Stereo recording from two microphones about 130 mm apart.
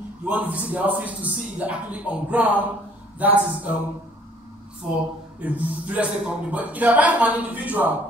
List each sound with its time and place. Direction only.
0.2 s speech: 10° right (ahead or behind)
5.4 s speech: 10° right (ahead or behind)